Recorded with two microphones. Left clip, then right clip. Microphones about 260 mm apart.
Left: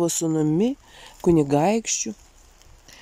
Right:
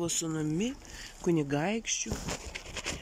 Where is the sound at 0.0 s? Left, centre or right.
Left.